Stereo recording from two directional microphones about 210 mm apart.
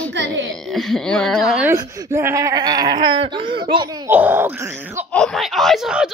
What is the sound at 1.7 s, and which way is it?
Speech, 15° right (ahead or behind).